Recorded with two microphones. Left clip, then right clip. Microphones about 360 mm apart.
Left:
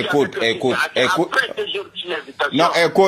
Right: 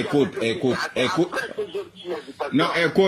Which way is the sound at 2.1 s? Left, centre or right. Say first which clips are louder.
Left 6 dB; left.